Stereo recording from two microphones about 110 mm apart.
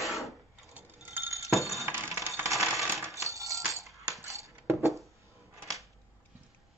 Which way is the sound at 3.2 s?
30° right (ahead or behind).